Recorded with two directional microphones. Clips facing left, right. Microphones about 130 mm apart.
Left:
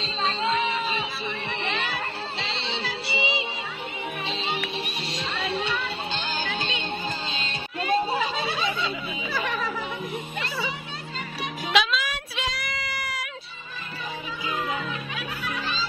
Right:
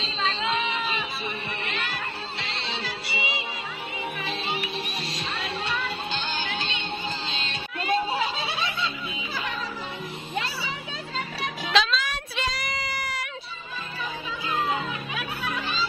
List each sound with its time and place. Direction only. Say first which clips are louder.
0.2 s a sound: left 2 dB; 40° left (ahead or behind)
3.1 s music: left 5 dB; 25° left (ahead or behind)
7.9 s chatter: left 1 dB; 45° left (ahead or behind)
11.7 s music: even; 10° left (ahead or behind)